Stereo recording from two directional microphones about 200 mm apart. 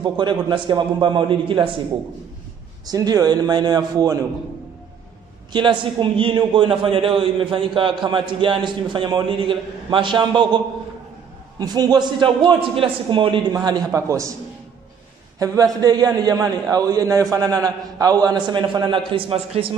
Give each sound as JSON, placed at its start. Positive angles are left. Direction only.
{"t": 0.0, "sound": "a man's voice", "side_deg": -25}
{"t": 2.9, "sound": "a man's voice", "side_deg": -20}
{"t": 5.5, "sound": "a man's voice", "side_deg": -25}
{"t": 15.3, "sound": "a man's voice", "side_deg": -15}